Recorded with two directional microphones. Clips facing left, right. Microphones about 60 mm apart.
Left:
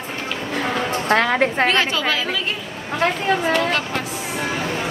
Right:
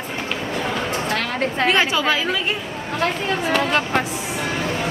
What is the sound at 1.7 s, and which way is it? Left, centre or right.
Speech, centre.